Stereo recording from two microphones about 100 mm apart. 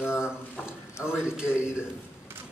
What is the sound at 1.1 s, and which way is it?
Speech, 5° right (ahead or behind).